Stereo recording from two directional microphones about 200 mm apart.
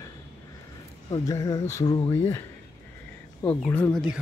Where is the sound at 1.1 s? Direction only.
20° left (ahead or behind).